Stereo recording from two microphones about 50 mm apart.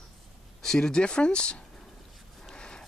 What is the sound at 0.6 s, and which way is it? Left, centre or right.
Speech, centre.